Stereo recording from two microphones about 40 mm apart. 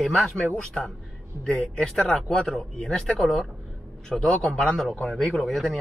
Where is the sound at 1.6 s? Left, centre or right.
Centre.